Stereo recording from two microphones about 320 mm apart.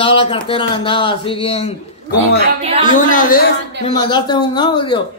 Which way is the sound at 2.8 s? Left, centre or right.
Left.